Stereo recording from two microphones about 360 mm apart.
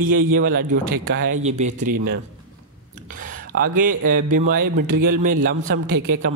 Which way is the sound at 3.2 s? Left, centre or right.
Right.